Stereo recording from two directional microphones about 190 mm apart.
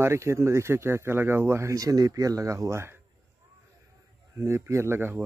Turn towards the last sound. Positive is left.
turn(degrees=-10)  # may be behind; listen again after turning